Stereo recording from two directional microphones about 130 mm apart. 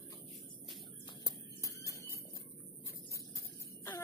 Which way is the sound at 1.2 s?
25° left (ahead or behind).